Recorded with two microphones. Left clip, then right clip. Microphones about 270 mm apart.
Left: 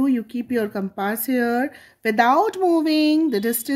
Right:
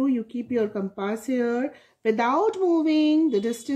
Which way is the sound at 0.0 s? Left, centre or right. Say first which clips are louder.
Left 3 dB; left.